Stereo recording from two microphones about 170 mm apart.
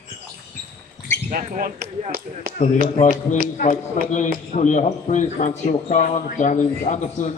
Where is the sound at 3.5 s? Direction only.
50° left (ahead or behind).